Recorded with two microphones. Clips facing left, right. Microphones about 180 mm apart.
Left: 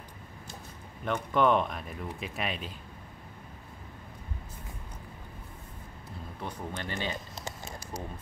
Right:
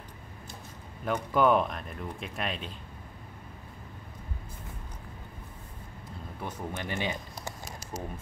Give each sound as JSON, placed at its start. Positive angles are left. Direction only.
{"t": 1.0, "sound": "speech", "side_deg": -5}
{"t": 6.4, "sound": "speech", "side_deg": -10}
{"t": 7.3, "sound": "a sound", "side_deg": 15}